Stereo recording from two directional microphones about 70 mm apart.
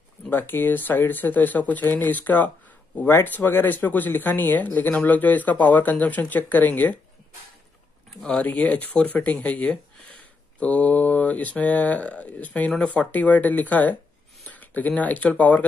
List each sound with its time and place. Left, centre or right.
0.3 s speech: left
8.2 s speech: centre